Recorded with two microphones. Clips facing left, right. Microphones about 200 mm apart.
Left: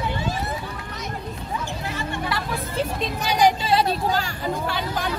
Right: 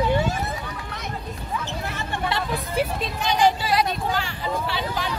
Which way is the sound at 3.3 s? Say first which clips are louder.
Left 1 dB; 15° left (ahead or behind).